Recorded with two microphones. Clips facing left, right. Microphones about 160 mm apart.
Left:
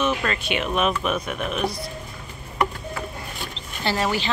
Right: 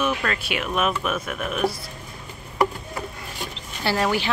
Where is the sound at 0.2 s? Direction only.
5° right (ahead or behind).